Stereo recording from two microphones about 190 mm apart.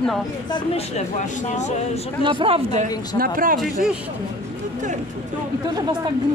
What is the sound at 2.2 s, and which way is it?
Speech, 30° right (ahead or behind).